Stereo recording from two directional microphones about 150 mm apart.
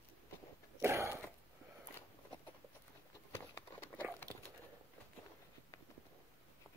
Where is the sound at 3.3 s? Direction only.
15° left (ahead or behind).